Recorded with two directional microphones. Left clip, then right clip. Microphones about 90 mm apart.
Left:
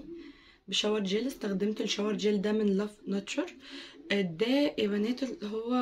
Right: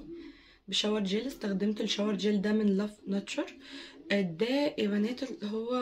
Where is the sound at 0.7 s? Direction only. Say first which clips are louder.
Left 1 dB; 25° left (ahead or behind).